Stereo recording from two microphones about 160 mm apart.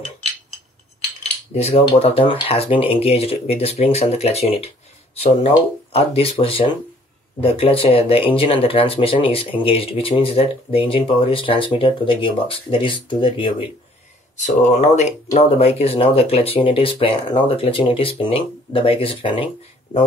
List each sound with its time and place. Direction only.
1.5 s speech: 40° left (ahead or behind)
14.4 s speech: 45° left (ahead or behind)